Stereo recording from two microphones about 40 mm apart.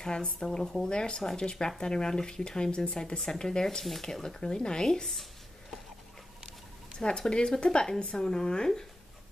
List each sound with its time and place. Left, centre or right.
0.0 s speech: left
7.0 s speech: centre